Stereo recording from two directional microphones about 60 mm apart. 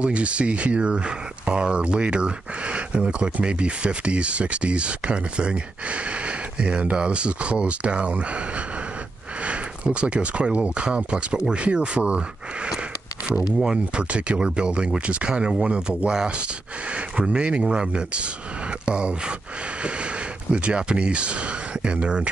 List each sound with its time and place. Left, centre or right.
0.0 s speech: centre
13.7 s speech: centre
20.5 s speech: centre